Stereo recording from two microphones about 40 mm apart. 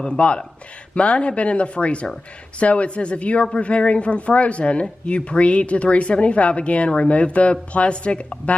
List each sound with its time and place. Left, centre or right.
0.2 s a woman's voice: left